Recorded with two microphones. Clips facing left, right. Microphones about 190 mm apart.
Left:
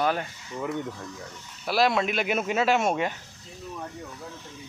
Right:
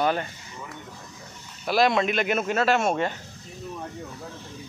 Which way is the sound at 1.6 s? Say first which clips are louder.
Right 2 dB; 5° left (ahead or behind).